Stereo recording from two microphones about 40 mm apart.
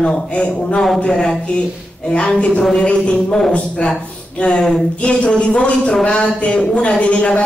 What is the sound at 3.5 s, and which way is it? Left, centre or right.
A woman's voice, left.